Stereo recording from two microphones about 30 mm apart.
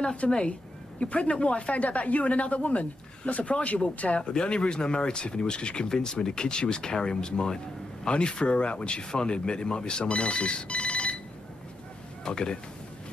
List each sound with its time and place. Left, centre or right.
0.5 s speech: left
8.1 s speech: left
12.3 s speech: left